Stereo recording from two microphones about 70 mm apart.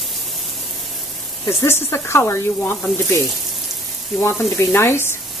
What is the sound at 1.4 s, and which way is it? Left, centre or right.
Speech, left.